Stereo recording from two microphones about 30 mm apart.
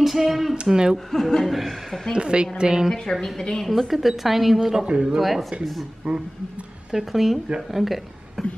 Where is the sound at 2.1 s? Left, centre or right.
Right.